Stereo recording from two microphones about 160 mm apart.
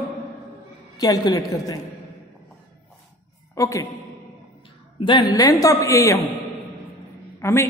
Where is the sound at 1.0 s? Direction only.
25° left (ahead or behind).